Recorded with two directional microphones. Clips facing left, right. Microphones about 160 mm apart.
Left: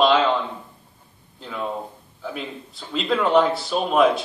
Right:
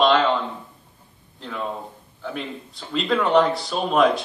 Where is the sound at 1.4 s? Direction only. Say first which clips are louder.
Left 1 dB; 5° left (ahead or behind).